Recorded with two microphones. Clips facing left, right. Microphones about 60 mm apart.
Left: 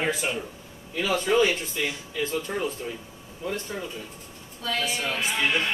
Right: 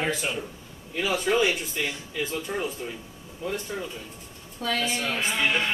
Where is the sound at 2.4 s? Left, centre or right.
Centre.